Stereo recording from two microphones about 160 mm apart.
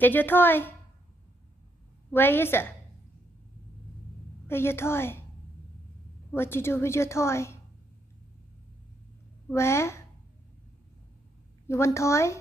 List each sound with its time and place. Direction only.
0.0 s a woman's voice: 10° left (ahead or behind)
2.0 s a woman's voice: 15° left (ahead or behind)
4.5 s a woman's voice: 15° left (ahead or behind)
6.3 s a woman's voice: 15° left (ahead or behind)
9.5 s a woman's voice: 15° left (ahead or behind)
11.6 s a woman's voice: 15° left (ahead or behind)